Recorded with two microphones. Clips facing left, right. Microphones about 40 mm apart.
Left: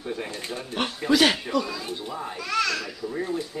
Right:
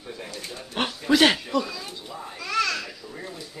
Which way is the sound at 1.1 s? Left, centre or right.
Centre.